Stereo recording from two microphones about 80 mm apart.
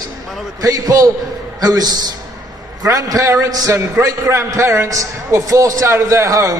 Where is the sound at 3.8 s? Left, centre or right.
Right.